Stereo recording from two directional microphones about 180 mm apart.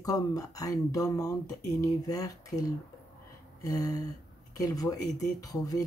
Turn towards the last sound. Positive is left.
turn(degrees=20)  # may be behind; listen again after turning